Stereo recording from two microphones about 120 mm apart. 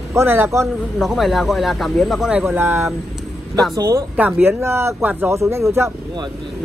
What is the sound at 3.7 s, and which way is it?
Speech, 30° right (ahead or behind).